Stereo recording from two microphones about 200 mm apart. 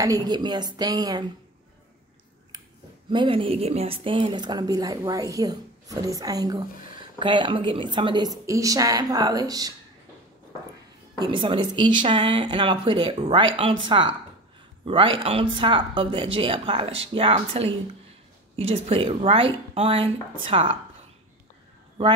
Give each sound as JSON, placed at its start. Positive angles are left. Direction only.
{"t": 0.0, "sound": "a woman's voice", "side_deg": -20}
{"t": 3.1, "sound": "a woman's voice", "side_deg": -25}
{"t": 11.1, "sound": "a woman's voice", "side_deg": -25}